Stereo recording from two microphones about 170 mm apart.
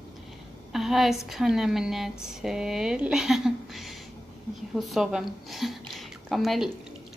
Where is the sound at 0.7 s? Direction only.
Centre (ahead or behind).